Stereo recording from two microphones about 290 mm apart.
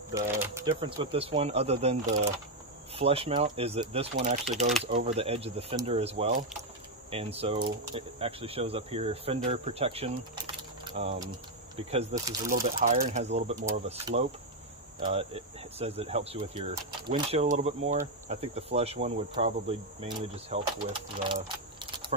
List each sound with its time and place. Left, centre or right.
0.1 s speech: centre